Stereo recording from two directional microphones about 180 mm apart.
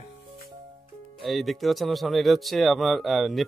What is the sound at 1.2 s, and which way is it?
Speech, centre (ahead or behind).